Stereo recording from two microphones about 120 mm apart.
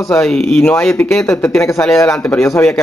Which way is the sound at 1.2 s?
20° left (ahead or behind).